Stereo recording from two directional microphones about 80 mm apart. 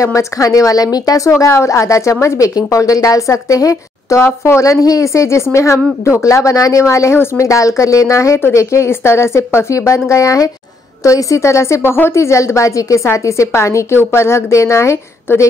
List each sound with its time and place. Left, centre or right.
0.0 s a woman's voice: left
4.2 s a woman's voice: left
4.6 s a woman's voice: left